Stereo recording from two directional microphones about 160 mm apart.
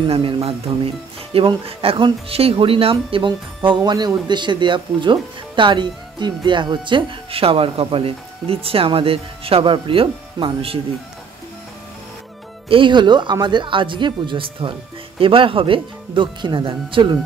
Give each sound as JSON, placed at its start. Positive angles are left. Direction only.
{"t": 0.1, "sound": "speech", "side_deg": -40}
{"t": 12.6, "sound": "speech", "side_deg": -30}